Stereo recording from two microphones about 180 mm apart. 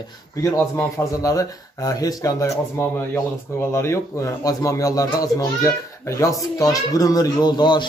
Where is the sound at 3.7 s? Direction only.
15° left (ahead or behind).